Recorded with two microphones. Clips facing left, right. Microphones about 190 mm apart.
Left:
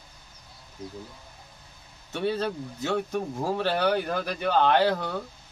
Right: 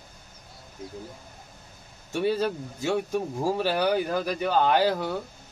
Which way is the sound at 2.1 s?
10° right (ahead or behind).